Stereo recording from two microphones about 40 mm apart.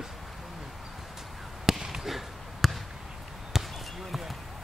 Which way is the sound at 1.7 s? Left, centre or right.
Centre.